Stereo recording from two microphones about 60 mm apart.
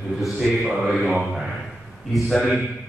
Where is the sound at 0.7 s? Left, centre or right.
Centre.